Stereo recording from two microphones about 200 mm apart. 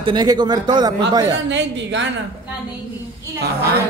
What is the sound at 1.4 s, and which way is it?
Speech, 60° right (ahead or behind).